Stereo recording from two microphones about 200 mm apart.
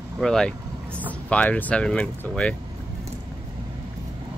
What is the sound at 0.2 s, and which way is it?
Speech, 5° left (ahead or behind).